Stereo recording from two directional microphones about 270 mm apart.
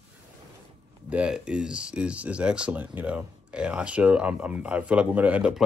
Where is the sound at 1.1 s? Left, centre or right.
Centre.